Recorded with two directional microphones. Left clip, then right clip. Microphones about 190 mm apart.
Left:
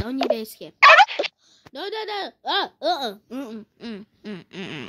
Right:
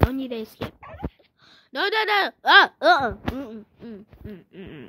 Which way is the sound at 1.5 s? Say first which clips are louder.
Right 7 dB; 15° right (ahead or behind).